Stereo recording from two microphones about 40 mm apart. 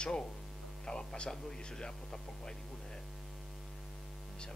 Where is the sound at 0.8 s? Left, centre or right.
Left.